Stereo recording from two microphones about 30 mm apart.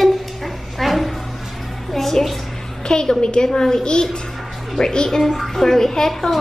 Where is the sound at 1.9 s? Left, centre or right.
Centre.